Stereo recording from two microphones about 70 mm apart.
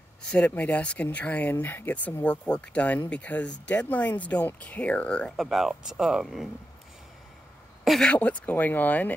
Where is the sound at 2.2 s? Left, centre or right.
Centre.